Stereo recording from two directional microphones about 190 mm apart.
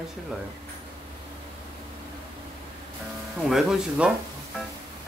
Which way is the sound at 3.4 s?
Centre (ahead or behind).